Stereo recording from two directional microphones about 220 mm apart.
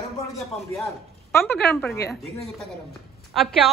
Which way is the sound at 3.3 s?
Centre (ahead or behind).